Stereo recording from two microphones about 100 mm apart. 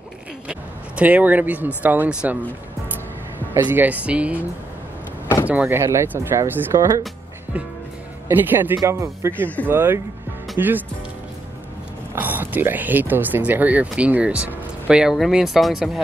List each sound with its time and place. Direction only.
0.5 s speech: 15° right (ahead or behind)
3.6 s speech: 15° right (ahead or behind)
5.5 s speech: 15° right (ahead or behind)
5.8 s speech: 25° right (ahead or behind)
8.3 s speech: 20° right (ahead or behind)
12.2 s speech: 20° right (ahead or behind); by 16.0 s centre (ahead or behind)